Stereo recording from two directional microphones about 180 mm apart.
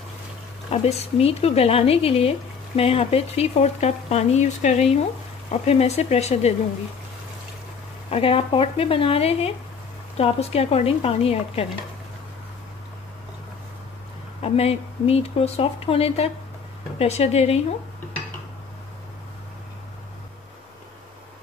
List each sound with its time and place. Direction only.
0.7 s speech: 35° left (ahead or behind)
8.1 s speech: 30° left (ahead or behind)
14.4 s speech: 35° left (ahead or behind)